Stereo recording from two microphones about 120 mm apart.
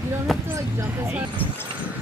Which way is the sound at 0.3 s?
Centre (ahead or behind).